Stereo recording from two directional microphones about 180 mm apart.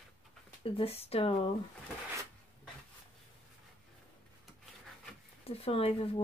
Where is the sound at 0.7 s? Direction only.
30° left (ahead or behind).